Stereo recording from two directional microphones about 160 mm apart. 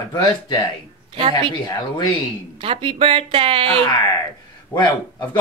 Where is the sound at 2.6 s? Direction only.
35° right (ahead or behind).